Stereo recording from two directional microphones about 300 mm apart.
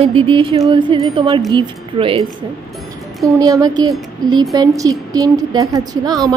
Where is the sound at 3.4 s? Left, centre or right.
Centre.